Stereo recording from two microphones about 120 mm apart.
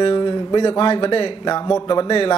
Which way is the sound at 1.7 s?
35° left (ahead or behind).